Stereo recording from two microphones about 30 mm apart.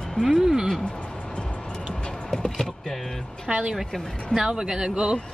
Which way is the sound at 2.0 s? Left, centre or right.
Centre.